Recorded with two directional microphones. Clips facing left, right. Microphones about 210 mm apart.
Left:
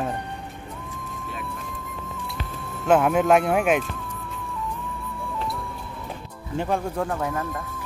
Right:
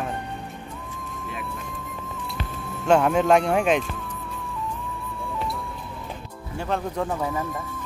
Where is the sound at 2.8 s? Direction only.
5° left (ahead or behind).